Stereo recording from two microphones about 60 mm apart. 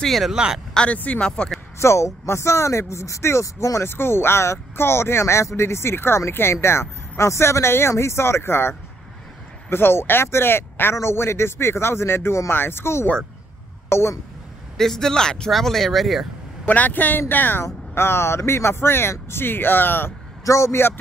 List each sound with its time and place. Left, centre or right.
0.0 s speech: centre
0.7 s speech: left
1.8 s speech: left
3.9 s speech: left
14.8 s speech: centre
16.6 s speech: left
17.9 s speech: left
20.4 s speech: left